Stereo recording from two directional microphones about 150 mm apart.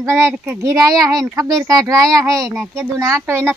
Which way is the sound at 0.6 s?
20° right (ahead or behind).